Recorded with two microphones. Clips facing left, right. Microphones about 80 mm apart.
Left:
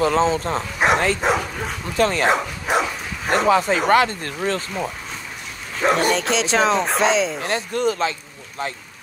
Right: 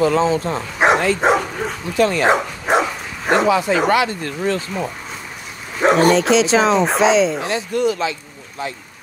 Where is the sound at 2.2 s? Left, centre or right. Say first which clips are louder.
Right 3 dB; right.